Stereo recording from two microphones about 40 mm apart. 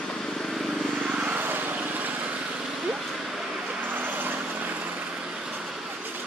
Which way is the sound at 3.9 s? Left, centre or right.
Right.